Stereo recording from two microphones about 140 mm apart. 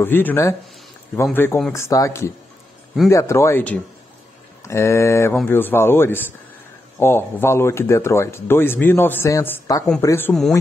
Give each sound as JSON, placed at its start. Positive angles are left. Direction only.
{"t": 0.0, "sound": "speech", "side_deg": 15}